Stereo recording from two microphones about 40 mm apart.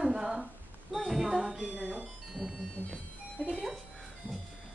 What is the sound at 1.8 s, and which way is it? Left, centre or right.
Speech, right.